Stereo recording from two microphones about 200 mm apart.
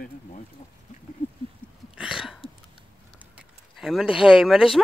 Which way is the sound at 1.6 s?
5° left (ahead or behind).